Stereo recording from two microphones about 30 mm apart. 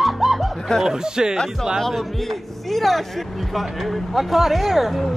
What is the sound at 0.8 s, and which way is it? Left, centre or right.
Speech, right.